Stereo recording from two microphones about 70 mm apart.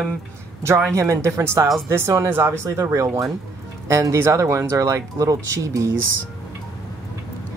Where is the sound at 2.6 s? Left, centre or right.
Right.